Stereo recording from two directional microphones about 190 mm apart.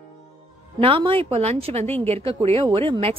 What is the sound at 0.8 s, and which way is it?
A woman's voice, 30° right (ahead or behind).